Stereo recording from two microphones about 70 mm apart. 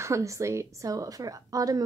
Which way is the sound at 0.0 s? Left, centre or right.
Right.